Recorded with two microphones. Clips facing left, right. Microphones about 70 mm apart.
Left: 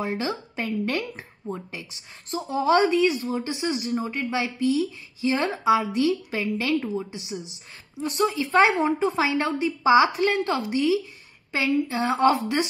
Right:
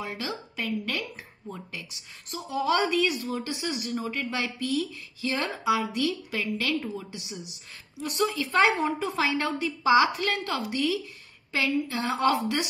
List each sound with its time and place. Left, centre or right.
0.0 s speech: left